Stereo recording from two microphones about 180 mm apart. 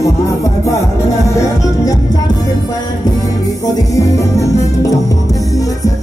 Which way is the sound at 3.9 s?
15° left (ahead or behind).